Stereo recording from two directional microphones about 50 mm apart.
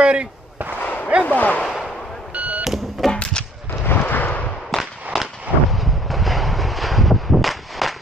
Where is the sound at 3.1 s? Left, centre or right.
Centre.